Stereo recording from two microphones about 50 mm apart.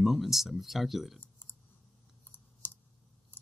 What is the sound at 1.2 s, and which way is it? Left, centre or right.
Computer keyboard, left.